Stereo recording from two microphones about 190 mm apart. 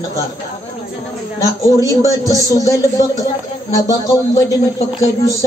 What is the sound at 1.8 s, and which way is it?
Speech, 15° left (ahead or behind).